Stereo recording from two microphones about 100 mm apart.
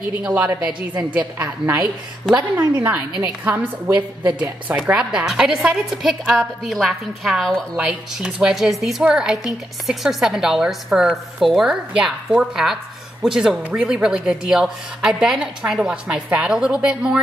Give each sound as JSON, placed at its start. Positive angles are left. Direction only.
{"t": 0.6, "sound": "a woman's voice", "side_deg": -10}
{"t": 3.9, "sound": "a woman's voice", "side_deg": -45}
{"t": 4.8, "sound": "a woman's voice", "side_deg": -10}
{"t": 7.7, "sound": "a woman's voice", "side_deg": -10}